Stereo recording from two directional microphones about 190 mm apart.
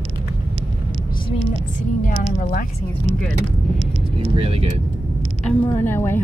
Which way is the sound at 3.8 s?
30° right (ahead or behind).